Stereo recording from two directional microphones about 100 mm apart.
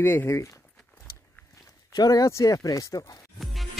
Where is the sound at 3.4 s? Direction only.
Centre (ahead or behind).